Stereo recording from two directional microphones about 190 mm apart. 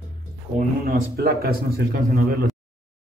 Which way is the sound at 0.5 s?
55° right (ahead or behind).